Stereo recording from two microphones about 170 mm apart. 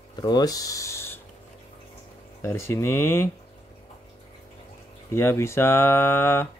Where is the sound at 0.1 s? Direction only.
25° left (ahead or behind).